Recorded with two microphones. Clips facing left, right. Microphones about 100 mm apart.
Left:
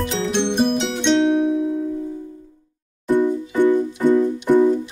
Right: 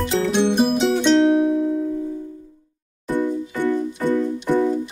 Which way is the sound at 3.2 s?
15° left (ahead or behind).